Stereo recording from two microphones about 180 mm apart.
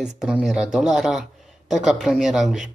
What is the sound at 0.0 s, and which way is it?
Speech, 5° right (ahead or behind).